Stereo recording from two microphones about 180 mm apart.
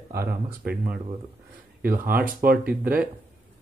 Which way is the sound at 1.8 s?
55° right (ahead or behind).